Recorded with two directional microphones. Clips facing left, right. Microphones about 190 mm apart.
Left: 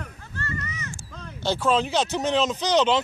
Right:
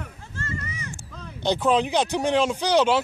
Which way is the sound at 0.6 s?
10° right (ahead or behind).